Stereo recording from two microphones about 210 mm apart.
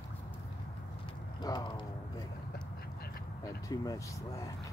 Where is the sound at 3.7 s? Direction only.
15° left (ahead or behind).